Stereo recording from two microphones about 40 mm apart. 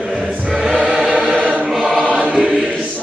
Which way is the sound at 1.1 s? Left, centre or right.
Right.